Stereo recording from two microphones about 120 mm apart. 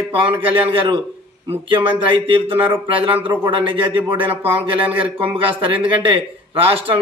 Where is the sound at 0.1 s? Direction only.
45° right (ahead or behind).